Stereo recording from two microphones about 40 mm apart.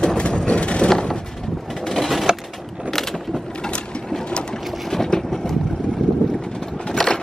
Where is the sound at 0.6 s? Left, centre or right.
Left.